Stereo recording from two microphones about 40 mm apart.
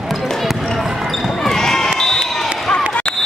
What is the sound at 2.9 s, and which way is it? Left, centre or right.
Basketball bounce, left.